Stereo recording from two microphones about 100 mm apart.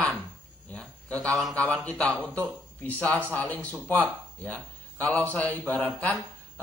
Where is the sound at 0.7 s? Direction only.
10° left (ahead or behind).